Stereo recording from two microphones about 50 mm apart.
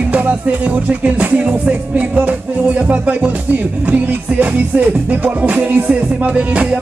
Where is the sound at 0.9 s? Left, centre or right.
Right.